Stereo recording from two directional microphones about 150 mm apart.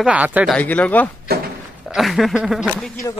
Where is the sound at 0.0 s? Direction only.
10° right (ahead or behind).